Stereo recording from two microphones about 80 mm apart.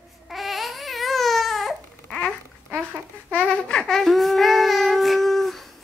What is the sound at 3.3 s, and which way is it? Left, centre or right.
Child singing, centre.